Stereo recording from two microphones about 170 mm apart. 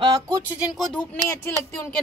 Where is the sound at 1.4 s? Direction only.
15° left (ahead or behind).